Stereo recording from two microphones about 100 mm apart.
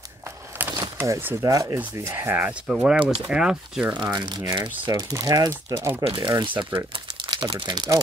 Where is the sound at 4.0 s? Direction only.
45° right (ahead or behind).